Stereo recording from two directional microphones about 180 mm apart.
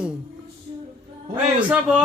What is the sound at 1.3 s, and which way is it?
Speech, 10° right (ahead or behind).